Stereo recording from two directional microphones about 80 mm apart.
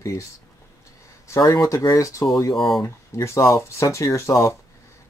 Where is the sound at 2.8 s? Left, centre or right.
Left.